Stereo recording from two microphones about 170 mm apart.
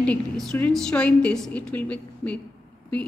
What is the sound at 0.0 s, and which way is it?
A woman's voice, 5° left (ahead or behind).